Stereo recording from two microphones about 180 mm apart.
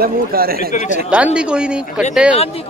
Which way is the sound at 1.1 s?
5° right (ahead or behind).